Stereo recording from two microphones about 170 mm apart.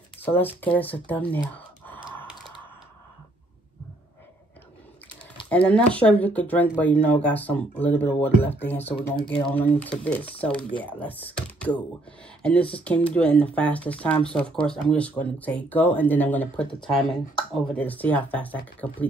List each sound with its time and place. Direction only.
0.2 s speech: 10° left (ahead or behind)
5.5 s speech: 10° left (ahead or behind)